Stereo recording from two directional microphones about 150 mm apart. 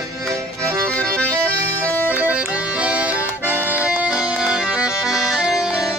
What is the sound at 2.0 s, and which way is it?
Accordion, 10° right (ahead or behind).